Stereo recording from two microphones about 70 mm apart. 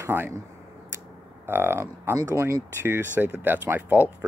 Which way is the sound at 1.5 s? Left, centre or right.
Right.